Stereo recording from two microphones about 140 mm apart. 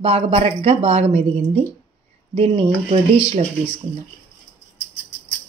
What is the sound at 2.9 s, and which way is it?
Speech, 40° right (ahead or behind).